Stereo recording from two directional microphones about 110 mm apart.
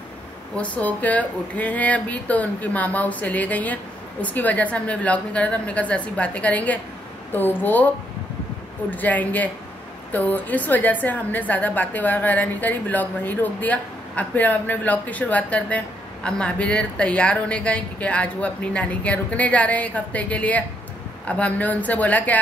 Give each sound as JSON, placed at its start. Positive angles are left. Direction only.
{"t": 0.6, "sound": "speech", "side_deg": 15}
{"t": 8.9, "sound": "speech", "side_deg": 15}